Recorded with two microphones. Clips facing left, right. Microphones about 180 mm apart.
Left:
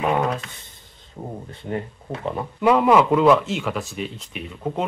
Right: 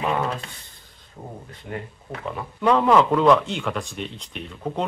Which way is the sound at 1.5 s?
30° left (ahead or behind).